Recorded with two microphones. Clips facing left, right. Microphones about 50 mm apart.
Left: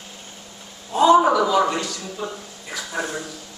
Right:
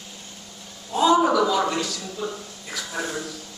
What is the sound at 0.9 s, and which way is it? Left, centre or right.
A man's voice, centre.